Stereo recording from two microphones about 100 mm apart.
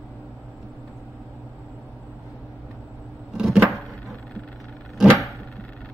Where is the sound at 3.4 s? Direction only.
5° right (ahead or behind).